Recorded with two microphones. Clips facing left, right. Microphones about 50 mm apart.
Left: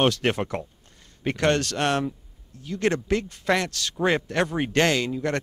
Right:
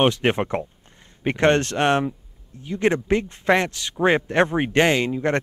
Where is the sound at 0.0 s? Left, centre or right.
Right.